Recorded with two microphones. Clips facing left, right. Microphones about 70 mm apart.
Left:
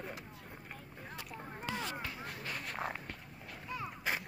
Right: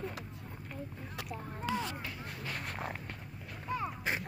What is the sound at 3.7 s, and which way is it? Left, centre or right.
Artillery fire, right.